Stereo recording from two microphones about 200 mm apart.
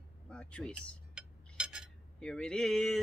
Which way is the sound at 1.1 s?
5° right (ahead or behind).